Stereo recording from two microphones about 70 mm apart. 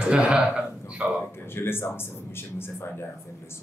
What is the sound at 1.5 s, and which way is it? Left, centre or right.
Speech, left.